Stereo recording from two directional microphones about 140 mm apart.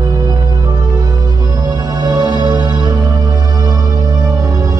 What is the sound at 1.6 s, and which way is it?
Music, 30° right (ahead or behind).